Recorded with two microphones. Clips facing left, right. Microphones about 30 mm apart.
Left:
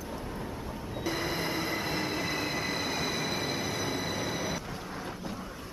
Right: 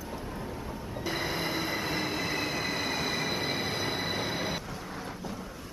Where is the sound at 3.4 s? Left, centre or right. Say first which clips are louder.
Right 1 dB; right.